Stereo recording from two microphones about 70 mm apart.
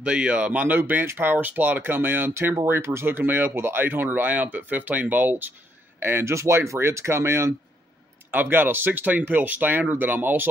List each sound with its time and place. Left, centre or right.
0.0 s speech: centre
6.0 s speech: right
8.3 s speech: right